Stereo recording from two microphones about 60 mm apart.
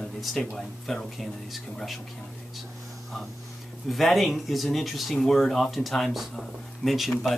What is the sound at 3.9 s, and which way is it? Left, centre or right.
Speech, centre.